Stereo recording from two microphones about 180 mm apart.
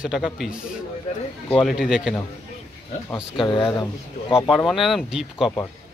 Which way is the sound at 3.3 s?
25° left (ahead or behind).